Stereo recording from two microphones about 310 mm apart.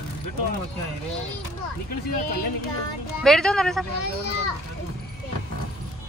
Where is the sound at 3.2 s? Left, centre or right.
Centre.